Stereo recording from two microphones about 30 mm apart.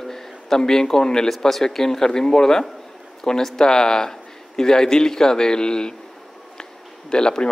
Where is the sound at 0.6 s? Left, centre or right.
Centre.